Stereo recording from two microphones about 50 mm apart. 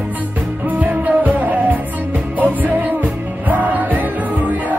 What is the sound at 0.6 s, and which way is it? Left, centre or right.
Music, right.